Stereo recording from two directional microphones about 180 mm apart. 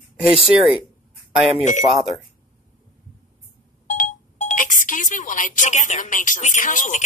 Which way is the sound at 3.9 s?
45° left (ahead or behind).